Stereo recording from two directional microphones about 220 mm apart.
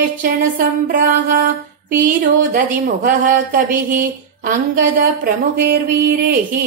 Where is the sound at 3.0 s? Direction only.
40° right (ahead or behind).